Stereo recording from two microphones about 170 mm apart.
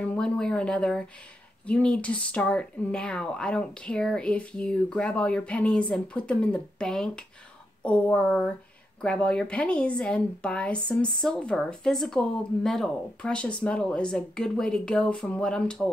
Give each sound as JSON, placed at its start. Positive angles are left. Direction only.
{"t": 0.0, "sound": "speech", "side_deg": 5}
{"t": 7.8, "sound": "a sound", "side_deg": 5}
{"t": 9.0, "sound": "speech", "side_deg": 5}